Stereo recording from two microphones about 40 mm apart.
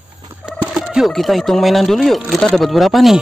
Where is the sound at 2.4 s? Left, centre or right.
Centre.